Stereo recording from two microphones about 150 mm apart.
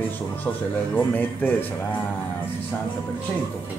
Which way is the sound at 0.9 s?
10° left (ahead or behind).